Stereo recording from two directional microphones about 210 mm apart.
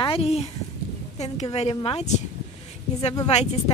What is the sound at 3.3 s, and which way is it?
Speech, 30° left (ahead or behind).